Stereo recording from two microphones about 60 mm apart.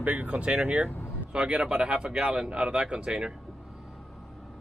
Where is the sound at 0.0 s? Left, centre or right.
Right.